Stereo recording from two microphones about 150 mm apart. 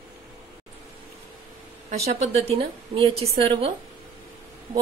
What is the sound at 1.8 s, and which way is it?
A woman's voice, 45° right (ahead or behind).